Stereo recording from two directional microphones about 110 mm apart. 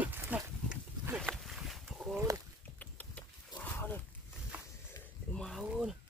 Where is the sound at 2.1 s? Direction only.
25° right (ahead or behind).